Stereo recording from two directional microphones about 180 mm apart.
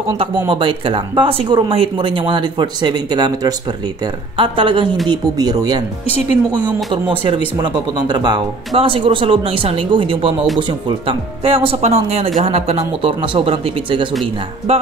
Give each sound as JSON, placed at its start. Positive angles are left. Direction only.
{"t": 0.5, "sound": "speech", "side_deg": -30}
{"t": 6.9, "sound": "speech", "side_deg": -30}